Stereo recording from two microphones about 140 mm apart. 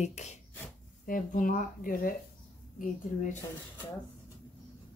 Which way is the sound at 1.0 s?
75° left (ahead or behind).